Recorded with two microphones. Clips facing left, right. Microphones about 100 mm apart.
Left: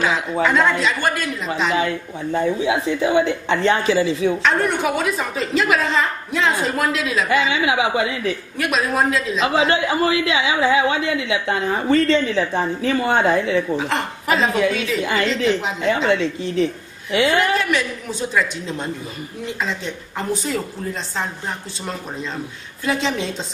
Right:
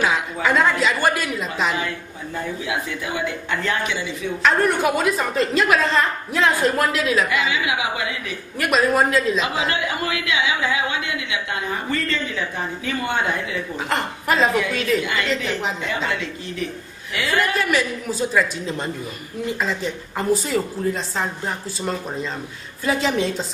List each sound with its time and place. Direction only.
0.4 s a woman's voice: centre (ahead or behind)
1.8 s speech: 25° left (ahead or behind)
4.4 s a woman's voice: centre (ahead or behind)
7.2 s speech: 30° left (ahead or behind)
8.5 s a woman's voice: centre (ahead or behind)
9.4 s a woman's voice: 30° left (ahead or behind)
13.7 s a woman's voice: centre (ahead or behind)
15.0 s a woman's voice: 30° left (ahead or behind)
17.6 s a woman's voice: centre (ahead or behind)
22.8 s a woman's voice: centre (ahead or behind)